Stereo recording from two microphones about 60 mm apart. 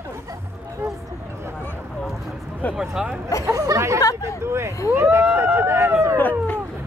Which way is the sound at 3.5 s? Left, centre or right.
Right.